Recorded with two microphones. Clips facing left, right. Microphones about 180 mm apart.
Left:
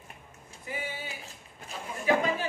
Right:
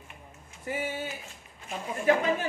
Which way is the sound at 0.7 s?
50° right (ahead or behind).